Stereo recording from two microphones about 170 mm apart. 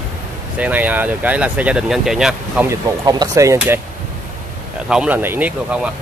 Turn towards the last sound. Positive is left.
turn(degrees=-10)  # may be behind; listen again after turning